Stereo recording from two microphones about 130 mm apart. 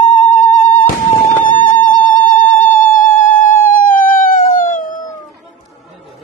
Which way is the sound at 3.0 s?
90° left.